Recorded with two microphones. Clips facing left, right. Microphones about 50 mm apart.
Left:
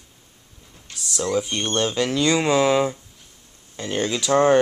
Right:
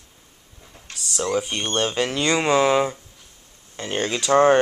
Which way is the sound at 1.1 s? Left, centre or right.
Right.